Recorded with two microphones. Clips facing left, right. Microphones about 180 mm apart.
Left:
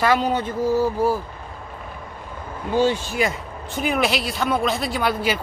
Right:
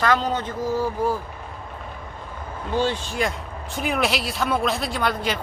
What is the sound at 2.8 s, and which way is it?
Speech, 5° left (ahead or behind).